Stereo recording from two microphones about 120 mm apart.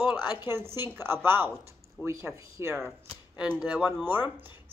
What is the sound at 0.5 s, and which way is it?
A woman's voice, 20° right (ahead or behind).